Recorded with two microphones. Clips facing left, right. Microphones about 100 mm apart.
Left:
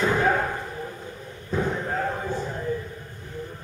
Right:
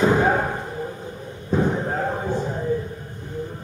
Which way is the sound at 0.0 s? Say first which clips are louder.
Right 4 dB; 25° right (ahead or behind).